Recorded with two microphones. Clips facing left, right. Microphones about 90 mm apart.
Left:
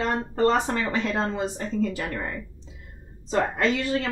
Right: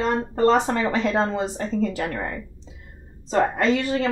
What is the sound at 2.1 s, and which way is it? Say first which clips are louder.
A woman's voice: right 2 dB; 30° right (ahead or behind).